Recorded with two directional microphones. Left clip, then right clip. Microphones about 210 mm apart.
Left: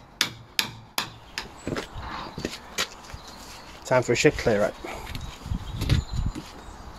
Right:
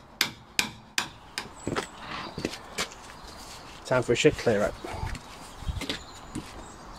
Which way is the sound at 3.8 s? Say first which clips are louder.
Left 2 dB; 20° left (ahead or behind).